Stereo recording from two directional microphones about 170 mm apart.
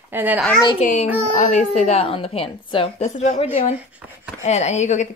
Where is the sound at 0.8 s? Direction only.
50° left (ahead or behind); by 3.1 s 30° left (ahead or behind).